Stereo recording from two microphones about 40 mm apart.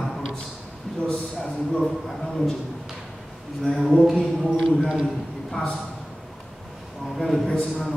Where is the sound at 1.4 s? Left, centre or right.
Centre.